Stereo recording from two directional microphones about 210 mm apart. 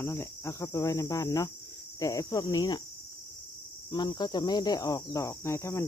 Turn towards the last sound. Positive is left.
turn(degrees=15)  # may be behind; listen again after turning